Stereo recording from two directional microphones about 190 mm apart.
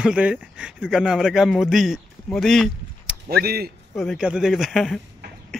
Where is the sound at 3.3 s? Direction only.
55° right (ahead or behind).